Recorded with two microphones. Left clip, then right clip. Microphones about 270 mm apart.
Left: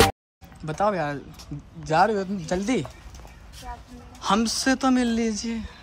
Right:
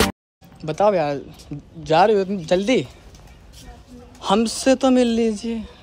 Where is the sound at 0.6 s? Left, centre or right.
Right.